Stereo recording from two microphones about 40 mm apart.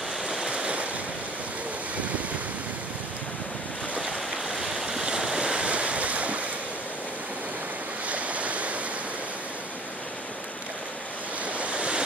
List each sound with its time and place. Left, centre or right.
0.5 s waves: right
4.6 s waves: centre; by 6.4 s right
8.1 s waves: right
11.4 s waves: right